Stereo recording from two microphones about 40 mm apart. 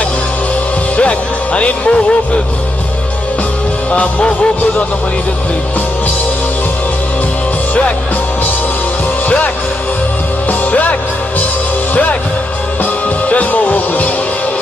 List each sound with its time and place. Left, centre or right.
0.9 s speech: left
3.9 s music: left
10.6 s music: left
13.3 s music: left